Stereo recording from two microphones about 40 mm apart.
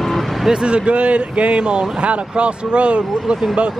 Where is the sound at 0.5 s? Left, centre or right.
Right.